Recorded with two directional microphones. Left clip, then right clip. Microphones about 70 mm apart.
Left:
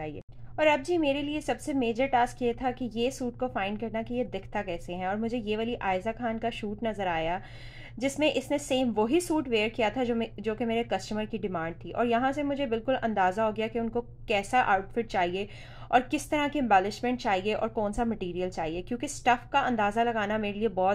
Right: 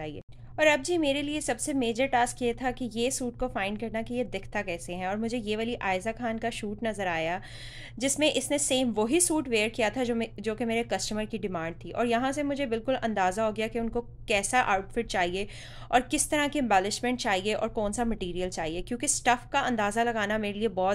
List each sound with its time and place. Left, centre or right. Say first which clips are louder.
0.6 s a woman's voice: right 1 dB; centre